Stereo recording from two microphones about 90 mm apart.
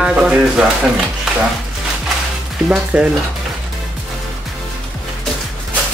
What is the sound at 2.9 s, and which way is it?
Speech, 10° right (ahead or behind).